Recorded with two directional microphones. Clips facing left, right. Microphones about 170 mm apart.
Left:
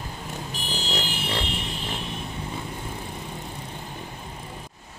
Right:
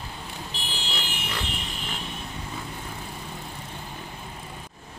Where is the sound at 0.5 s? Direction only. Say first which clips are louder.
Left 7 dB; 40° left (ahead or behind).